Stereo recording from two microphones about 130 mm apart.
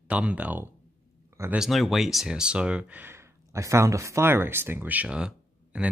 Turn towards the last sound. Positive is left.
turn(degrees=-5)  # may be behind; listen again after turning